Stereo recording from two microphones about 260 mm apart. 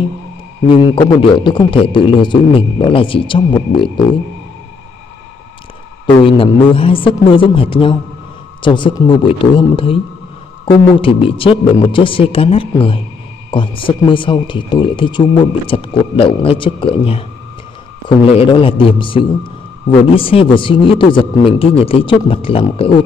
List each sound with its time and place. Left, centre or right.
1.4 s a man's voice: centre
6.0 s a man's voice: left